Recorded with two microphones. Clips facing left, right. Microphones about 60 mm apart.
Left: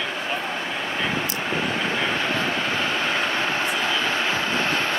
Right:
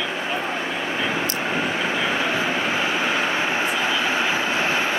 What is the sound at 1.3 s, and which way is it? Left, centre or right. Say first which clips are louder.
Vehicle: right 1 dB; centre.